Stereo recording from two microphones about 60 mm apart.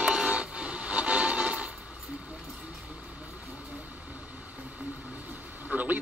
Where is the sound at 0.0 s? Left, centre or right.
Centre.